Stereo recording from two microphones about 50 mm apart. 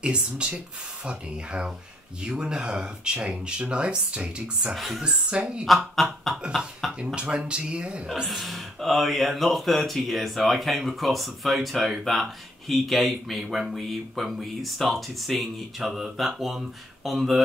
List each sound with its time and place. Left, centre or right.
0.0 s speech: right
4.7 s speech: centre
5.0 s speech: centre
5.9 s speech: centre
7.2 s speech: right
8.3 s speech: centre